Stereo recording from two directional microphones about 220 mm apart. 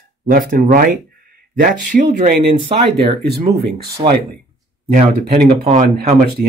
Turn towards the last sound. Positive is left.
turn(degrees=-35)  # may be behind; listen again after turning